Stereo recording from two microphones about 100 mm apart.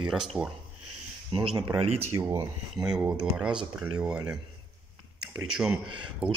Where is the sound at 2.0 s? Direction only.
25° right (ahead or behind).